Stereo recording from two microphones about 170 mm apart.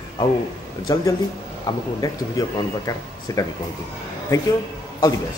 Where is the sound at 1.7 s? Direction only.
25° left (ahead or behind).